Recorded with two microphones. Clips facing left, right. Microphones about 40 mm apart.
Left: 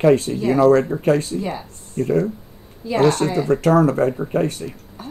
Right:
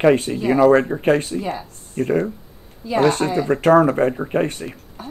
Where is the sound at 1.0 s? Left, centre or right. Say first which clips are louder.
Even; right.